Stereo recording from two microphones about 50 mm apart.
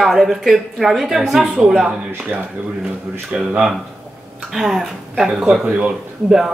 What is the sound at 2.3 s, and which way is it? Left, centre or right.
Speech, right.